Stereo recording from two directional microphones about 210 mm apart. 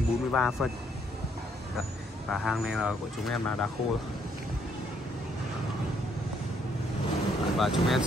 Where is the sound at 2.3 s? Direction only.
Centre (ahead or behind).